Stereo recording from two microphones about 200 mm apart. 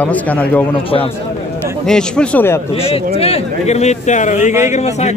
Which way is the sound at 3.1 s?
30° left (ahead or behind).